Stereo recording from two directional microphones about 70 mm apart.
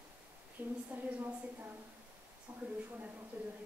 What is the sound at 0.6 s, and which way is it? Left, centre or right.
A woman's voice, right.